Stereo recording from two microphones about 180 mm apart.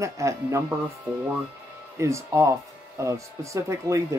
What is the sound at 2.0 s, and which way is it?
Speech, 15° right (ahead or behind).